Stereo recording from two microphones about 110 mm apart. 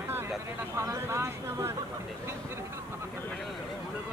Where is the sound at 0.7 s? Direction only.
25° right (ahead or behind).